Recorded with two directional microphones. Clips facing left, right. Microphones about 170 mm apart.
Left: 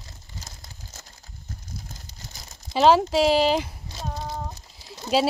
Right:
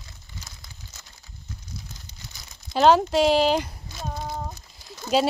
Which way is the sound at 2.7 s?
Centre (ahead or behind).